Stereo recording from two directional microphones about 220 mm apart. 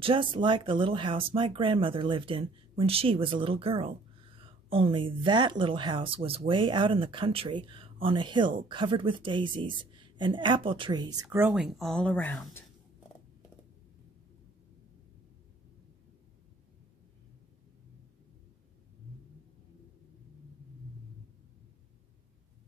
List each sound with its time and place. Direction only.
0.0 s speech: 25° right (ahead or behind); by 12.6 s 10° left (ahead or behind)